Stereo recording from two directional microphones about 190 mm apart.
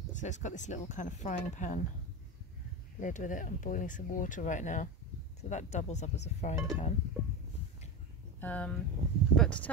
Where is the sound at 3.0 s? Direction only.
40° left (ahead or behind).